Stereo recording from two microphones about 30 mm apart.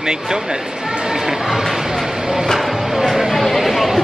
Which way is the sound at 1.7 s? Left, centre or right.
Centre.